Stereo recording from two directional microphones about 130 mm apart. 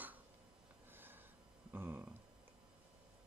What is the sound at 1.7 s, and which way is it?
Speech, 15° right (ahead or behind).